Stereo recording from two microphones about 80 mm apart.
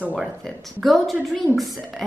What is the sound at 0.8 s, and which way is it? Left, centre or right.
Speech, centre.